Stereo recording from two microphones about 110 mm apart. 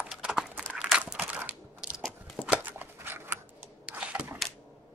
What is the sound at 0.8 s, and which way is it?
Crumpling, 5° right (ahead or behind).